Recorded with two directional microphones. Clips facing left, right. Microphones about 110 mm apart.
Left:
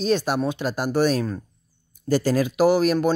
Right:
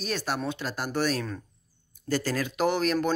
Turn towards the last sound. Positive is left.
turn(degrees=10)  # may be behind; listen again after turning